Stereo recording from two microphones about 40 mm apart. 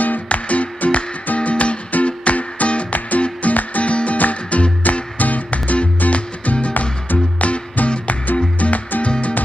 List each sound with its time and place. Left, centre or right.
0.3 s music: left